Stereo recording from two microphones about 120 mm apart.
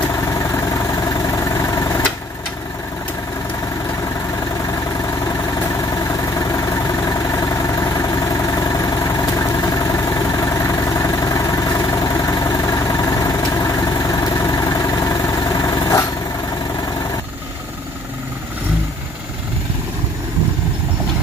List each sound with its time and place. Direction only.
0.4 s vehicle: 25° left (ahead or behind)
6.3 s vehicle: 25° left (ahead or behind)